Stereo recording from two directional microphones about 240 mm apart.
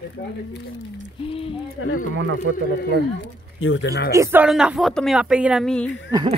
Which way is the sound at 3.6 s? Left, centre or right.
Left.